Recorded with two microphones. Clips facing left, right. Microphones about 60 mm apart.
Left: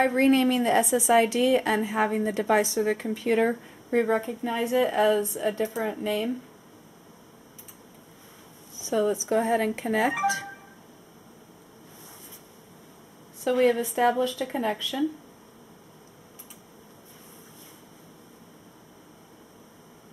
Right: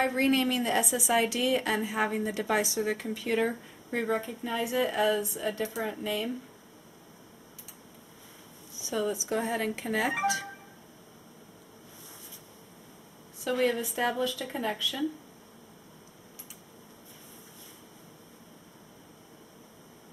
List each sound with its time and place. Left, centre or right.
0.0 s speech: centre
5.6 s speech: centre
6.0 s speech: centre
8.9 s speech: centre
10.1 s speech: centre
13.5 s speech: centre